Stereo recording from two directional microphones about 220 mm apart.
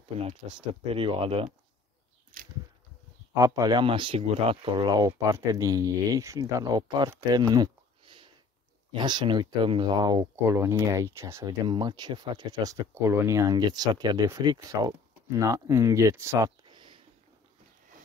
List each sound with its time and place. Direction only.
0.5 s speech: 25° right (ahead or behind)
3.3 s speech: 15° right (ahead or behind)